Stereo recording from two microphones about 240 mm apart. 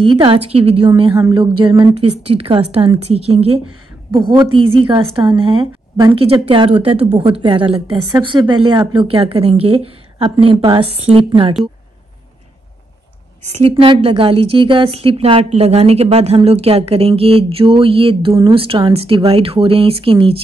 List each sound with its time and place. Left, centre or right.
0.0 s a woman's voice: right
13.4 s a woman's voice: right